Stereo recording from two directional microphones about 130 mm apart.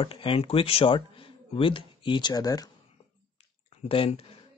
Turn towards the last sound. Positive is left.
turn(degrees=45)  # may be behind; listen again after turning